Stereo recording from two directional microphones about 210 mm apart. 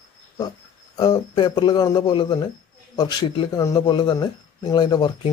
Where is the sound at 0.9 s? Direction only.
20° left (ahead or behind).